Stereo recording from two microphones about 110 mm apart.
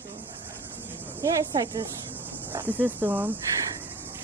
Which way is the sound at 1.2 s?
35° right (ahead or behind).